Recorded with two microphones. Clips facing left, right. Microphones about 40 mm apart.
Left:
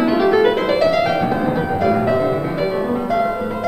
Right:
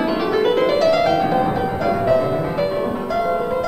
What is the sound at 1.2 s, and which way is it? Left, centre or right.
Music, centre.